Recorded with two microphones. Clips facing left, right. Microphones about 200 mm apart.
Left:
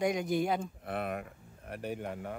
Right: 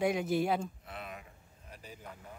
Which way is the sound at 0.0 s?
5° right (ahead or behind).